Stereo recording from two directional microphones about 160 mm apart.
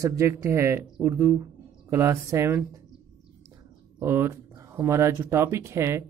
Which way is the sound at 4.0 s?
15° right (ahead or behind).